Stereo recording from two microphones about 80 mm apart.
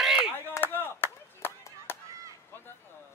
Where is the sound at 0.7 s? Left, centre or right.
Left.